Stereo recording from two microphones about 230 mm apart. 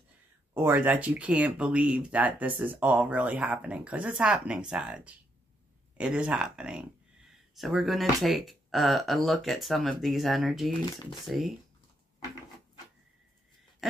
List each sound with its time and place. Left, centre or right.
0.6 s speech: centre